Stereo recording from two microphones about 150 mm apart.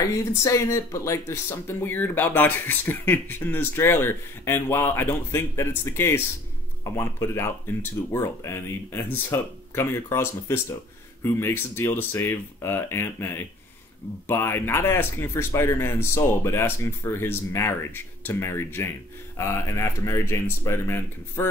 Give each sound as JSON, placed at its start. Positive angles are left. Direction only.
{"t": 0.4, "sound": "speech", "side_deg": 20}